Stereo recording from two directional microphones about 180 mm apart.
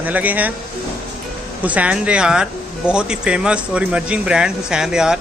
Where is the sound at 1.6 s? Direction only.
10° right (ahead or behind).